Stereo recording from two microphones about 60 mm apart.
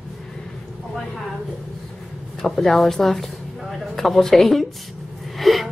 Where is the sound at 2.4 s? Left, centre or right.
Centre.